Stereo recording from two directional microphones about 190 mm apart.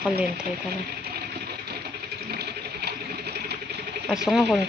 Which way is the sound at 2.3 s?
60° right (ahead or behind).